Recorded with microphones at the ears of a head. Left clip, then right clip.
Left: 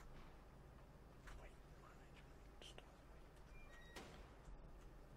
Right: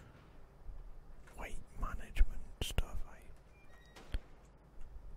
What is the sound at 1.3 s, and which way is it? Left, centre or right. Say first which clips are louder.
Whispering: right 14 dB; right.